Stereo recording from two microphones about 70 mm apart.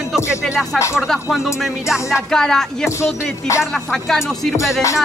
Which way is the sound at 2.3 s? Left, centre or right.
Centre.